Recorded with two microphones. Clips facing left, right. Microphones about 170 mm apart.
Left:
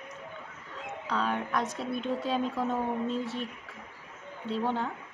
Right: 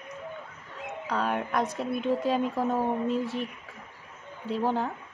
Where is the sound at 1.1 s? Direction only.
10° right (ahead or behind).